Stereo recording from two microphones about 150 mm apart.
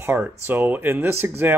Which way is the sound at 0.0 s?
15° right (ahead or behind).